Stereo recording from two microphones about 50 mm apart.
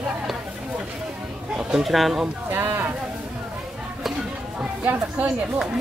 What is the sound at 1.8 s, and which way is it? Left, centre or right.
Speech, centre.